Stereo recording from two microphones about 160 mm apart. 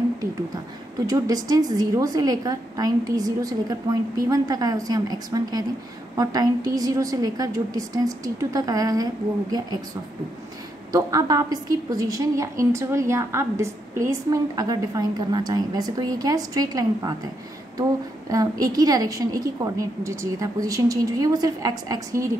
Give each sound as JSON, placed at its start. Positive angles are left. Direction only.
{"t": 1.0, "sound": "a woman's voice", "side_deg": -25}
{"t": 10.9, "sound": "a woman's voice", "side_deg": -20}
{"t": 18.3, "sound": "a woman's voice", "side_deg": -20}